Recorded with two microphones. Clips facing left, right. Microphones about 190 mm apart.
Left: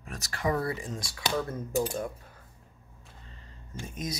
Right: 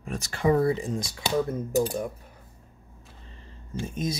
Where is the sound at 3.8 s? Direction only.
25° right (ahead or behind).